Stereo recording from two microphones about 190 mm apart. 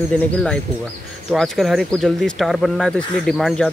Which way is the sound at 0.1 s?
5° left (ahead or behind).